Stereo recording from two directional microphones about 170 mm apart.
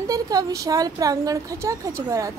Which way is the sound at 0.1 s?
20° right (ahead or behind).